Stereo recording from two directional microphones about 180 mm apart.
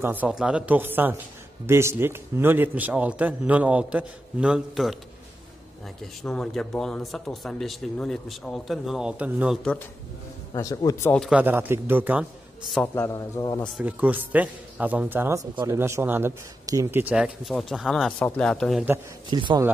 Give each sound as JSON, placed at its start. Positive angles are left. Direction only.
{"t": 0.0, "sound": "a man's voice", "side_deg": -10}
{"t": 6.2, "sound": "speech", "side_deg": 5}
{"t": 10.5, "sound": "a man's voice", "side_deg": 20}
{"t": 11.1, "sound": "speech", "side_deg": 5}
{"t": 11.3, "sound": "a man's voice", "side_deg": -10}
{"t": 12.8, "sound": "a man's voice", "side_deg": 15}
{"t": 13.6, "sound": "a man's voice", "side_deg": -5}
{"t": 19.3, "sound": "speech", "side_deg": -25}